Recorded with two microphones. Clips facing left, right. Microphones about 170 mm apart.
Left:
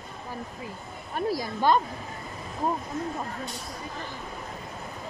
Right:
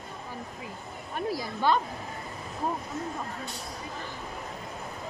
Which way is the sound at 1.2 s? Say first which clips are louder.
Left 3 dB; 40° left (ahead or behind).